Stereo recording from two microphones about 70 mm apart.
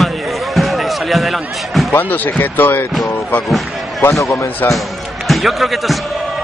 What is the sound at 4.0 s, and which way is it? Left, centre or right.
Speech, left.